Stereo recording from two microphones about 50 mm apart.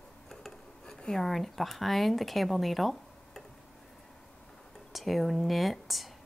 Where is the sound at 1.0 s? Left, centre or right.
Centre.